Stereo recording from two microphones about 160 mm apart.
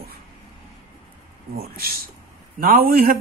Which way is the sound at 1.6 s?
70° right (ahead or behind).